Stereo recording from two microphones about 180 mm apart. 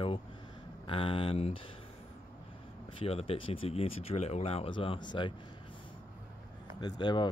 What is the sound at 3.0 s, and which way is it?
Speech, 30° left (ahead or behind).